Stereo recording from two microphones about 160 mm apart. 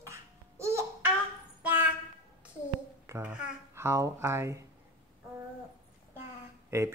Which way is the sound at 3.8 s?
15° right (ahead or behind).